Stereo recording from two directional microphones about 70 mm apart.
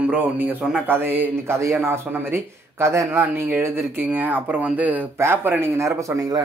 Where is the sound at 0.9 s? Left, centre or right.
Right.